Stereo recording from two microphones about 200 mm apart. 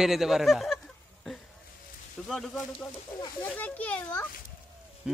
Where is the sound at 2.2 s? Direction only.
5° left (ahead or behind).